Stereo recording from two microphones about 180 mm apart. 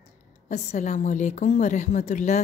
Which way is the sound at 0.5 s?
40° left (ahead or behind).